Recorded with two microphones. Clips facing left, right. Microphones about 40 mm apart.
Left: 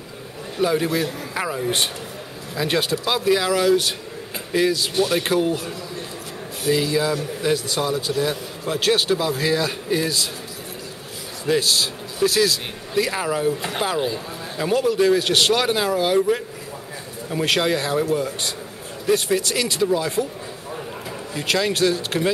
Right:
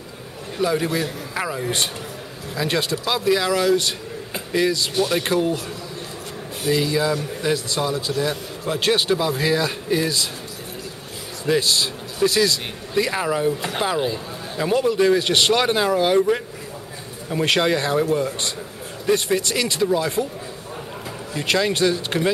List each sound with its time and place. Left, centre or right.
0.6 s speech: centre
6.6 s speech: centre
11.4 s speech: centre
17.3 s speech: centre
21.4 s speech: centre